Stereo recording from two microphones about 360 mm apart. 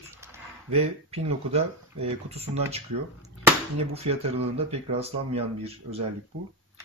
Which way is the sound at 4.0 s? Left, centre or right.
Centre.